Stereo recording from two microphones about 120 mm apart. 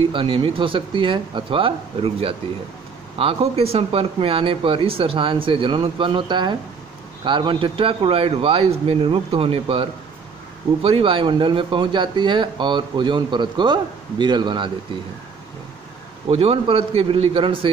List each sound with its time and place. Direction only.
0.1 s speech: 45° right (ahead or behind)
16.3 s speech: 50° right (ahead or behind)